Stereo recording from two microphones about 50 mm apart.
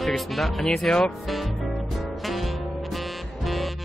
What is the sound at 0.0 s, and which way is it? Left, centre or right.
Speech, centre.